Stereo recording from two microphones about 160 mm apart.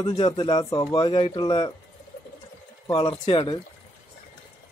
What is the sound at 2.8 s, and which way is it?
Speech, 25° left (ahead or behind).